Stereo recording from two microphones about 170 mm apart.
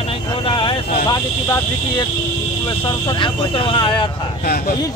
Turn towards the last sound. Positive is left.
turn(degrees=30)  # may be behind; listen again after turning